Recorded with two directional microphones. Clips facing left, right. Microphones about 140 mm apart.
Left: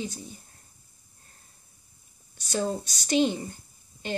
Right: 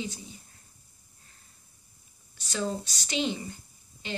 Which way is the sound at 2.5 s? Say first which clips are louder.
Left 3 dB; 45° left (ahead or behind).